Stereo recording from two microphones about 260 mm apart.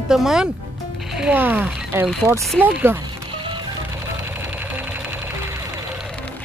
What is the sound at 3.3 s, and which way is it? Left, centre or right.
Music, centre.